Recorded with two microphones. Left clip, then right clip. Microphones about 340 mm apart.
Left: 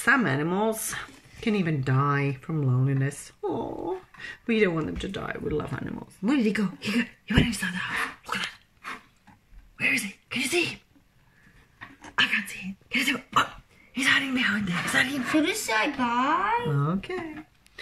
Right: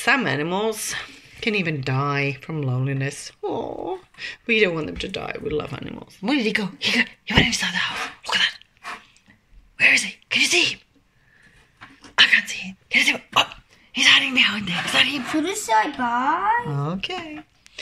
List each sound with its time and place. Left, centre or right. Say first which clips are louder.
0.0 s a woman's voice: right 3 dB; centre
9.8 s a sound: right 9 dB; centre
12.2 s throat clearing: right 9 dB; centre
13.9 s a woman's voice: right 8 dB; centre
16.8 s a woman's voice: right 3 dB; centre